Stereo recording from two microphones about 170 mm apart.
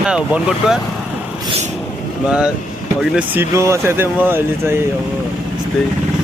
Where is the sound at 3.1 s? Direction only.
10° right (ahead or behind).